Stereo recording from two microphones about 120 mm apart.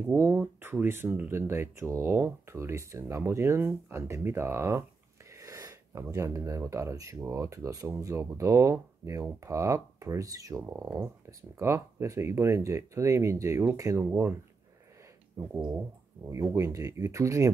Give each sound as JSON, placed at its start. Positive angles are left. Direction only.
{"t": 0.0, "sound": "speech", "side_deg": -20}